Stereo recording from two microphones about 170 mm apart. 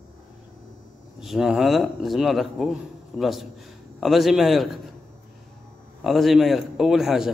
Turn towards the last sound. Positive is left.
turn(degrees=0)  # may be behind; listen again after turning